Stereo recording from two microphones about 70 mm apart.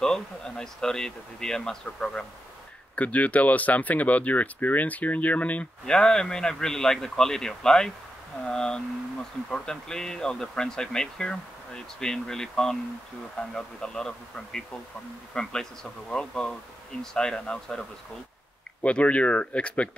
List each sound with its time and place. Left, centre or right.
0.0 s speech: centre
5.9 s speech: centre